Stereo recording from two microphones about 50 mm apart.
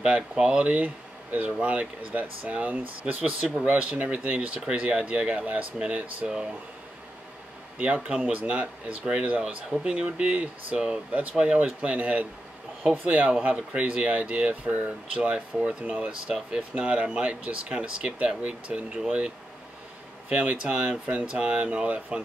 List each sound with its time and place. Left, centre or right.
0.0 s speech: right
7.7 s speech: right